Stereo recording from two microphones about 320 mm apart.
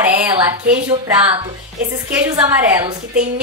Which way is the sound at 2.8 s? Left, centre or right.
Right.